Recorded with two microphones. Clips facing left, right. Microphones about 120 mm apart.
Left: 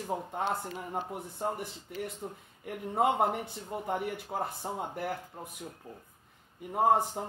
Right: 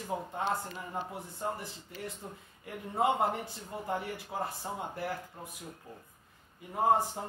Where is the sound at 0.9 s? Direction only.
60° left (ahead or behind).